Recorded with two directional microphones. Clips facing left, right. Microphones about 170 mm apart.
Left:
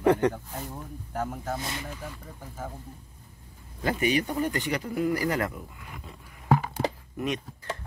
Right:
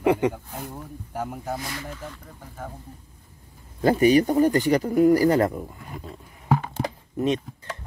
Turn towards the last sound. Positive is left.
turn(degrees=-25)  # may be behind; listen again after turning